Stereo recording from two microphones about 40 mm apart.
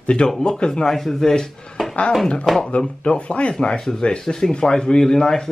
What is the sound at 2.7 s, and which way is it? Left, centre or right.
Speech, left.